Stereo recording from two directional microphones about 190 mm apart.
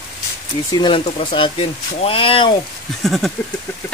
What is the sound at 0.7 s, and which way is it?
Speech, 25° left (ahead or behind).